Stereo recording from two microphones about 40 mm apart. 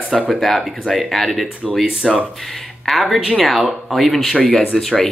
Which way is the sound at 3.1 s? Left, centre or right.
Centre.